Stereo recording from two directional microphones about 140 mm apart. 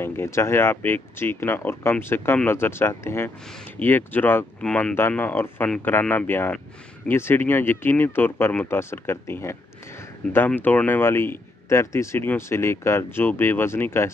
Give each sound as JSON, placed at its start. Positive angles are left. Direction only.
{"t": 0.0, "sound": "speech", "side_deg": 15}